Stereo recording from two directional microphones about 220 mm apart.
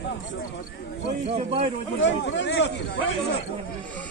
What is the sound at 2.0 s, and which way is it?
Speech, 55° left (ahead or behind).